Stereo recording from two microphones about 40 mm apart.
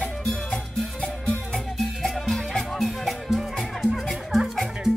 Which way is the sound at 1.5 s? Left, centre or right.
Centre.